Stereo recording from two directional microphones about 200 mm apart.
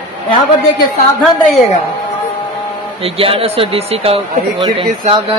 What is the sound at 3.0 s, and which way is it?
A man's voice, 30° right (ahead or behind).